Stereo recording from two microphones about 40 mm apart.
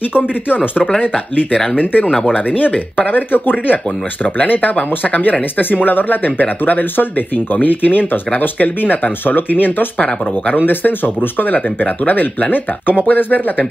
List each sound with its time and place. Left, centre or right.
1.8 s speech: left
9.9 s speech: left
10.6 s speech: left